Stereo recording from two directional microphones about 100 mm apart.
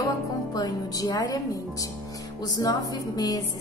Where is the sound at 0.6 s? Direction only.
40° left (ahead or behind).